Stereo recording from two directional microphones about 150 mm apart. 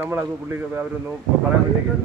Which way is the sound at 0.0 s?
15° right (ahead or behind).